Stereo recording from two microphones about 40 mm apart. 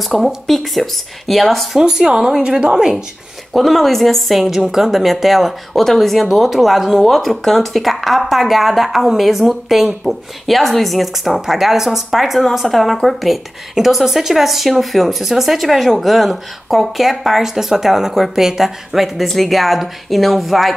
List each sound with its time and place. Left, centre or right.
0.0 s speech: centre
1.8 s speech: centre
3.5 s speech: centre
4.6 s speech: centre
4.8 s speech: centre
6.2 s speech: centre